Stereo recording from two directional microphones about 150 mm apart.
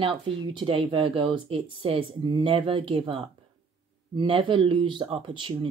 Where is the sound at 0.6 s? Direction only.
35° right (ahead or behind).